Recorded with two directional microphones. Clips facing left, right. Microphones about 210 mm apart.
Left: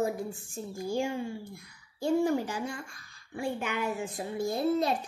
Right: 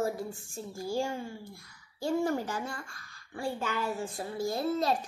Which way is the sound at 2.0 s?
15° left (ahead or behind).